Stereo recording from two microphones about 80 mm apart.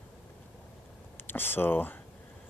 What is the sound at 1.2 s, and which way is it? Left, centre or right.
Speech, left.